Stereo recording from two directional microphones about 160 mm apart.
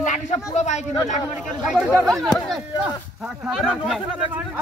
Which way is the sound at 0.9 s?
20° left (ahead or behind).